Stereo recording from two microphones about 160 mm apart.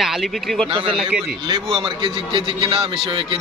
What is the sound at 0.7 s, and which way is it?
A man's voice, 30° right (ahead or behind).